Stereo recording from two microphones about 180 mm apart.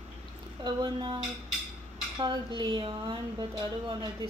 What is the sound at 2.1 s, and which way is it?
Dishes, 25° right (ahead or behind).